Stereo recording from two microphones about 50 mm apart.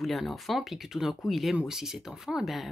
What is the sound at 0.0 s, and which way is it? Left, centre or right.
Speech, centre.